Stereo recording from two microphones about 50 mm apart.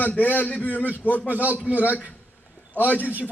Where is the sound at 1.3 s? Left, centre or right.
Right.